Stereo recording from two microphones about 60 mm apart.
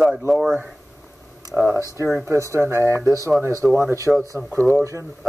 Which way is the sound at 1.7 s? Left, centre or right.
Right.